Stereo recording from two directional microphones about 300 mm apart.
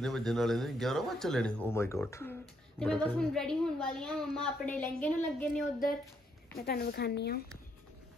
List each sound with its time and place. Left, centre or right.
0.0 s a woman's voice: centre
6.5 s speech: left